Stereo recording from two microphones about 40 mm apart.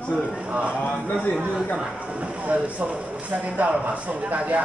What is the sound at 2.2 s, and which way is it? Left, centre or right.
Speech, right.